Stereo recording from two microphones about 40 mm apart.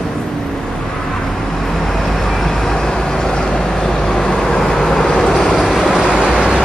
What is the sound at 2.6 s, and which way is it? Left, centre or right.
Vehicle, centre.